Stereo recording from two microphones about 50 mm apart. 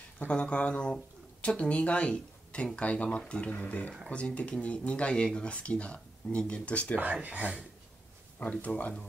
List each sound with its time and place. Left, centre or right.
0.3 s speech: left
7.0 s speech: right
8.4 s speech: left